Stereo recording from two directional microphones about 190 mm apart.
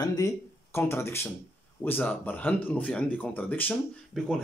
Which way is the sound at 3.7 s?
Centre (ahead or behind).